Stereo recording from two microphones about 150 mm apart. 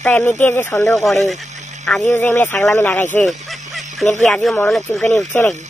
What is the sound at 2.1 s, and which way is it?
Speech, 15° left (ahead or behind).